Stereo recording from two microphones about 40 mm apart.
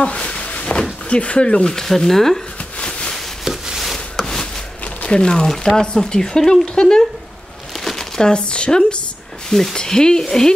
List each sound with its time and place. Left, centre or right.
0.0 s a sound: left
1.1 s speech: left; by 2.4 s centre
3.4 s a sound: centre
3.8 s rub: centre
5.0 s speech: left
7.8 s crumpling: centre
8.3 s speech: left
9.5 s speech: centre
9.8 s speech: centre